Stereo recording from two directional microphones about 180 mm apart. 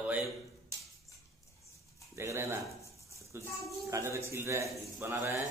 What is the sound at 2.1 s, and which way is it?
A man's voice, 15° right (ahead or behind).